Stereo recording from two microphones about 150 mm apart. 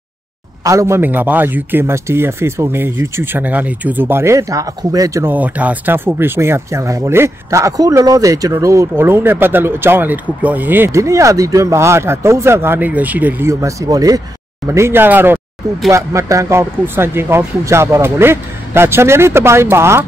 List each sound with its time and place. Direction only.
0.7 s a man's voice: 20° right (ahead or behind)